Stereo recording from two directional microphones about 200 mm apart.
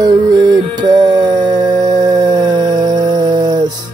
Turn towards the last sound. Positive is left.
turn(degrees=-20)  # may be behind; listen again after turning